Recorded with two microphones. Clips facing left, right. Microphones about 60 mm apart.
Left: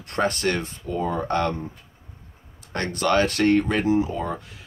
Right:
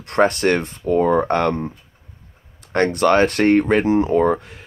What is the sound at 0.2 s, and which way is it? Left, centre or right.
Speech, right.